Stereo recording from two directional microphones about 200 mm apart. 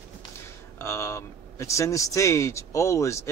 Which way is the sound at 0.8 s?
15° left (ahead or behind).